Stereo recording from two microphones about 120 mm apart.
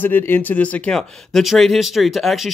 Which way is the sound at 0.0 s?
15° left (ahead or behind).